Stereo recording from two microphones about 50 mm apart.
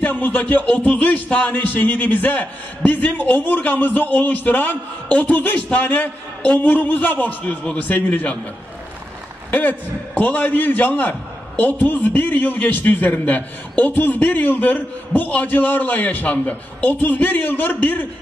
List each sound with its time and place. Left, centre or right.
0.0 s a man's voice: left
9.5 s a man's voice: left